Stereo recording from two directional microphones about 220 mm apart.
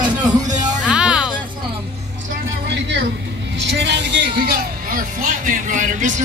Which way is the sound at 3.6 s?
50° right (ahead or behind).